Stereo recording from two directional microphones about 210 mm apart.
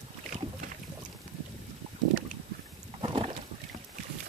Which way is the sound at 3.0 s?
25° right (ahead or behind).